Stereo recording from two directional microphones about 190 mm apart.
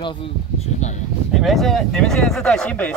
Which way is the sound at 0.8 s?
40° left (ahead or behind).